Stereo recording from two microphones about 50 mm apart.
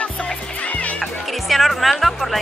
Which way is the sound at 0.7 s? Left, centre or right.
Left.